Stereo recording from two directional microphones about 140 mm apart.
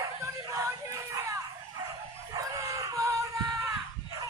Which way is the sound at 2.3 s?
25° right (ahead or behind).